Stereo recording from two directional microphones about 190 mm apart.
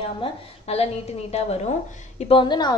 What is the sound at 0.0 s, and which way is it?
A woman's voice, 30° left (ahead or behind).